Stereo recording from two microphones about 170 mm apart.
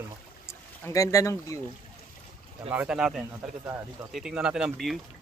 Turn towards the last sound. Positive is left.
turn(degrees=-5)  # may be behind; listen again after turning